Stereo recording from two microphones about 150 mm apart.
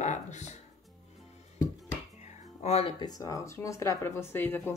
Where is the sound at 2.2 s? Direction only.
50° left (ahead or behind).